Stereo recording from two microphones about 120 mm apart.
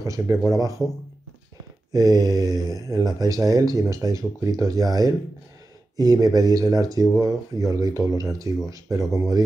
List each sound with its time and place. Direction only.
0.0 s speech: 30° right (ahead or behind)
1.9 s speech: 30° right (ahead or behind)